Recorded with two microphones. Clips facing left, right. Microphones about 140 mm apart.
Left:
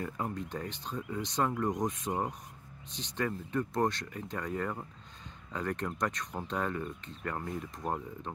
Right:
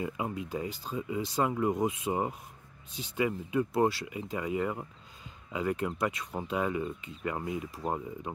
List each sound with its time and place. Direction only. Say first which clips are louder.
0.0 s speech: right 2 dB; 5° right (ahead or behind)